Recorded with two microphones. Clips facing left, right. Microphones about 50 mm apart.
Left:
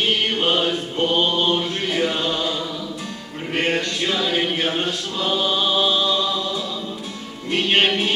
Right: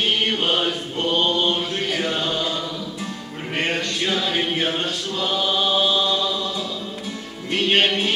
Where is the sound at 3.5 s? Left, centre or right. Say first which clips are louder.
Left 2 dB; centre.